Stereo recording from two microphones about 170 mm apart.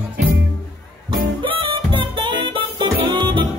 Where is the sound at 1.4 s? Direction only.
30° right (ahead or behind).